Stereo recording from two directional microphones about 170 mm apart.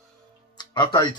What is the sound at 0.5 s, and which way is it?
Music, 25° left (ahead or behind).